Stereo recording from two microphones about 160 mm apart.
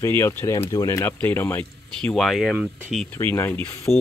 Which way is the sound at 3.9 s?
Centre (ahead or behind).